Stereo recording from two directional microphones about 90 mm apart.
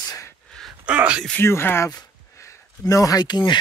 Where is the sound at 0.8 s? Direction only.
10° right (ahead or behind).